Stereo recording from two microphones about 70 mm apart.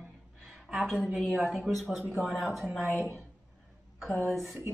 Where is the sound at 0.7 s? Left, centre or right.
Centre.